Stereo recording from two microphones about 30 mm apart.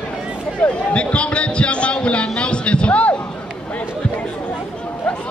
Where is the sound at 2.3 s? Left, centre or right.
Left.